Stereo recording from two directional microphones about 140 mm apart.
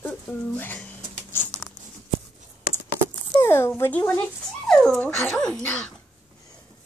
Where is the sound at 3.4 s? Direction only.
15° left (ahead or behind).